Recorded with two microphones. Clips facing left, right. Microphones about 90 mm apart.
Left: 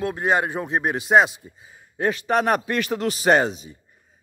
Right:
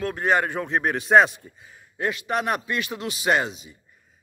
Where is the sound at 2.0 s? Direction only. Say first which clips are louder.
Left 4 dB; 35° left (ahead or behind).